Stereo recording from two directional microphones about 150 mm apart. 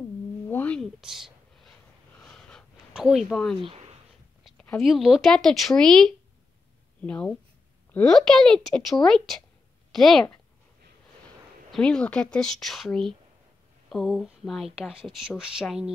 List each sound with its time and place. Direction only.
0.5 s a sound: 10° left (ahead or behind)
1.0 s gasp: centre (ahead or behind)
2.9 s speech: 5° right (ahead or behind)
3.6 s a sound: 45° right (ahead or behind)
4.6 s speech: 5° left (ahead or behind)
11.7 s speech: 5° left (ahead or behind)